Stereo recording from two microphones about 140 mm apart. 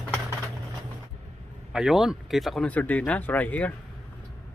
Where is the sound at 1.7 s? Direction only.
5° right (ahead or behind).